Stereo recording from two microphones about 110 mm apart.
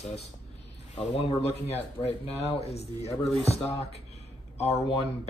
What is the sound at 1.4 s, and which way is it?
Speech, 70° left (ahead or behind).